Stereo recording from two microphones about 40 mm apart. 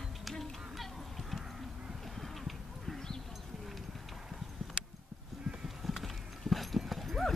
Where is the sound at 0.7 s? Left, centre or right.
Centre.